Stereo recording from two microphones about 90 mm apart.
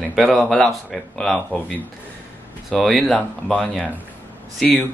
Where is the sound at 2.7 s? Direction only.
Centre (ahead or behind).